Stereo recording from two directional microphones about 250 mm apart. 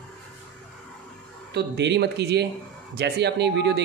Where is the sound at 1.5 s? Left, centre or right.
Right.